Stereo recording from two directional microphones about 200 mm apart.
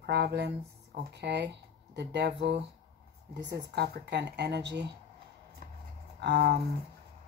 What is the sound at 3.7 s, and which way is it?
Speech, 55° right (ahead or behind).